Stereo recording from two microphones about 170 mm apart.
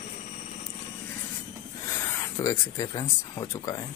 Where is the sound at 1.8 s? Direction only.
15° left (ahead or behind).